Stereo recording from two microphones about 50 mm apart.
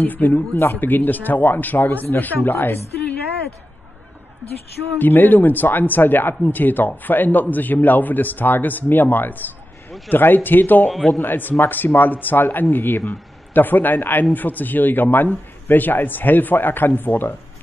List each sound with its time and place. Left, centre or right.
0.0 s speech: left
4.9 s speech: left